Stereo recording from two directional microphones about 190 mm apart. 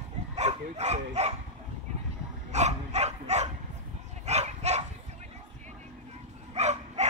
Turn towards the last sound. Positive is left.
turn(degrees=-35)  # may be behind; listen again after turning